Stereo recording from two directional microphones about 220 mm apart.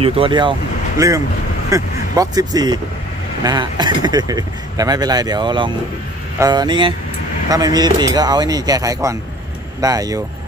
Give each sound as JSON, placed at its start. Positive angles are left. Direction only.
{"t": 0.0, "sound": "speech", "side_deg": -20}